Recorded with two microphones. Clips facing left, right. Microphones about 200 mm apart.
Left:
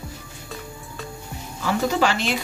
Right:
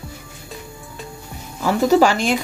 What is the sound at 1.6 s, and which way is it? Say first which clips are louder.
Speech: right 7 dB; 40° right (ahead or behind).